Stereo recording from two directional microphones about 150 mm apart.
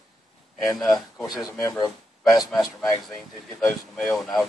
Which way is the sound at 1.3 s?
Centre (ahead or behind).